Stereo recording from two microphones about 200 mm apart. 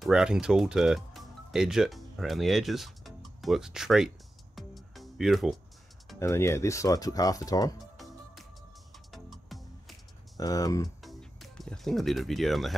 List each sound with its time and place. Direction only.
0.0 s speech: 5° right (ahead or behind)
4.6 s music: centre (ahead or behind)
6.1 s speech: 15° left (ahead or behind)
7.8 s music: centre (ahead or behind)
10.3 s speech: 20° left (ahead or behind)
11.0 s music: centre (ahead or behind)